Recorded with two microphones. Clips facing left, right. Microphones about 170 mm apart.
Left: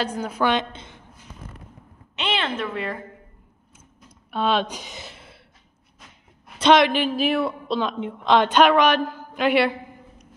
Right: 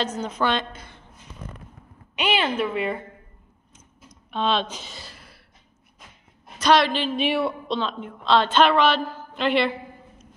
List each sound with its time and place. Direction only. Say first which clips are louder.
0.0 s a woman's voice: left 1 dB; 10° left (ahead or behind)
0.7 s a sound: left 2 dB; 20° left (ahead or behind)
2.1 s a woman's voice: right 3 dB; 10° right (ahead or behind)
4.3 s a sound: left 2 dB; 10° left (ahead or behind)
6.6 s a woman's voice: left 3 dB; 20° left (ahead or behind)
7.2 s speech: left 1 dB; centre (ahead or behind)
7.8 s a woman's voice: left 3 dB; 15° left (ahead or behind)